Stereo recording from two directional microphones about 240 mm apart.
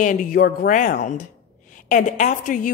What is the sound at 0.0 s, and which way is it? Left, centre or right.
A woman's voice, left.